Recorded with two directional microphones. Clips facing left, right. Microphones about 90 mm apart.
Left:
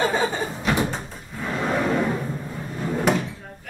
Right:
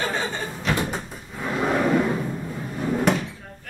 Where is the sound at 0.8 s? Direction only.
10° right (ahead or behind).